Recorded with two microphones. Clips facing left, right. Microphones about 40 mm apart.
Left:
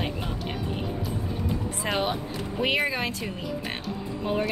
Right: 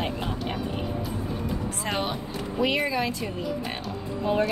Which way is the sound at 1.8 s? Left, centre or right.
Centre.